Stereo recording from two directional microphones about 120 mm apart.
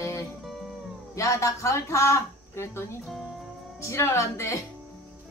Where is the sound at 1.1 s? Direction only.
25° left (ahead or behind).